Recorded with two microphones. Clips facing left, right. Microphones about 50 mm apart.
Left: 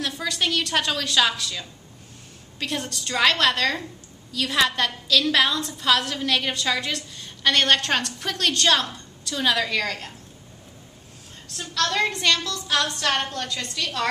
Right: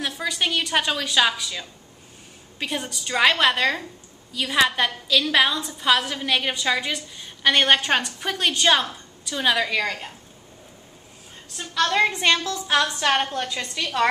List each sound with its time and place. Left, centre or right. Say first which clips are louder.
0.0 s a woman's voice: right 1 dB; centre
11.5 s a woman's voice: right 3 dB; centre